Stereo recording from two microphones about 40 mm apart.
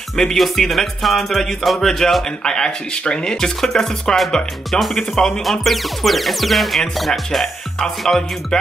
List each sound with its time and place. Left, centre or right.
0.1 s music: centre
4.6 s speech: centre
7.0 s music: centre